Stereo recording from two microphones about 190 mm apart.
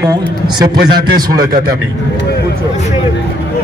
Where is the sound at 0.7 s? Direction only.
55° right (ahead or behind).